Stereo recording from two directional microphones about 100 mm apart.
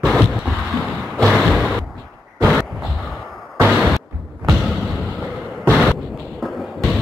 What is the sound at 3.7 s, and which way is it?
Artillery fire, centre (ahead or behind).